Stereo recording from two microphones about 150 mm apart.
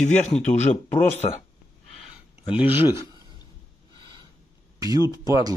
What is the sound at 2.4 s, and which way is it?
Speech, 10° right (ahead or behind).